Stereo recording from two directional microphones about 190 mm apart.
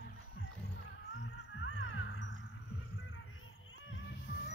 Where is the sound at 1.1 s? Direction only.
70° left (ahead or behind).